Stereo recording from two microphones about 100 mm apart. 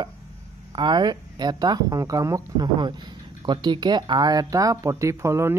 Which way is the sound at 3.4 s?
50° right (ahead or behind).